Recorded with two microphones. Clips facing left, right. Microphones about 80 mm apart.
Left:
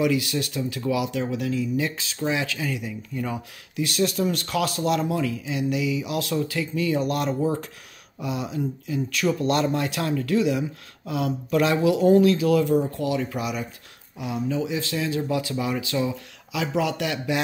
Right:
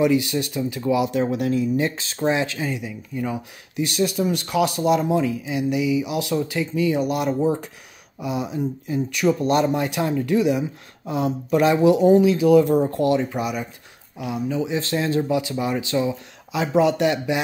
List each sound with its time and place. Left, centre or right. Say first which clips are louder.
0.0 s speech: right 4 dB; right
2.8 s speech: right 2 dB; centre
3.7 s speech: right 2 dB; right
4.0 s speech: right 2 dB; centre
7.3 s speech: right 3 dB; right
12.0 s speech: right 2 dB; centre
12.8 s speech: right 6 dB; right
14.1 s speech: right 2 dB; right
14.7 s speech: right 4 dB; right
15.2 s speech: right 3 dB; centre